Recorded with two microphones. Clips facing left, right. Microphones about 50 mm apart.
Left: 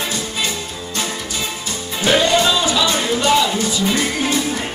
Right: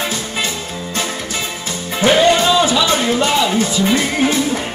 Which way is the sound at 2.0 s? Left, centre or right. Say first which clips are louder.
Right 3 dB; right.